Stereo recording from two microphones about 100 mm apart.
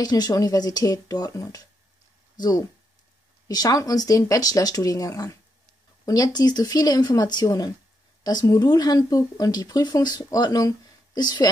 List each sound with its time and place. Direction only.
0.0 s a woman's voice: 40° left (ahead or behind)